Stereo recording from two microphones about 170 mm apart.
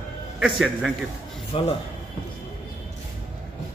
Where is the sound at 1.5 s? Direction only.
35° left (ahead or behind).